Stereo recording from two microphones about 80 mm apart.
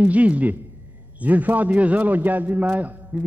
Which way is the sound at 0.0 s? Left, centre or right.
Centre.